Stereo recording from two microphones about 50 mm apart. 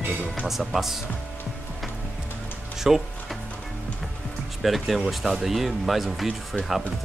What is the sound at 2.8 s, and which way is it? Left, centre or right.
Music, centre.